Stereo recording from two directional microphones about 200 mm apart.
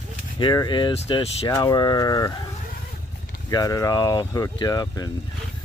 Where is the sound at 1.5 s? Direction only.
20° left (ahead or behind).